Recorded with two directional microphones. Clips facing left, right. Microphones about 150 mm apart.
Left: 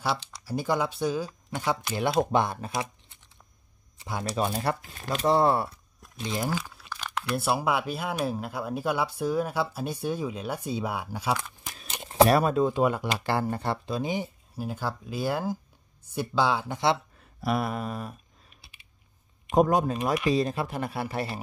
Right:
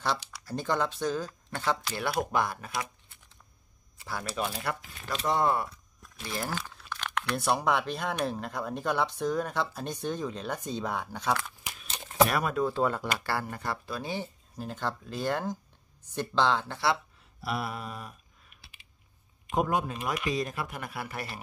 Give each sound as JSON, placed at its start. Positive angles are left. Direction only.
{"t": 0.4, "sound": "speech", "side_deg": 10}
{"t": 4.6, "sound": "speech", "side_deg": 35}
{"t": 6.1, "sound": "speech", "side_deg": 20}
{"t": 6.6, "sound": "speech", "side_deg": 5}
{"t": 12.0, "sound": "a sound", "side_deg": 30}
{"t": 12.6, "sound": "speech", "side_deg": 15}
{"t": 17.2, "sound": "a sound", "side_deg": 50}
{"t": 19.5, "sound": "speech", "side_deg": 40}